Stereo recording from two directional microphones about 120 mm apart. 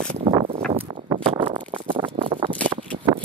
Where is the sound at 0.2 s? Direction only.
45° right (ahead or behind).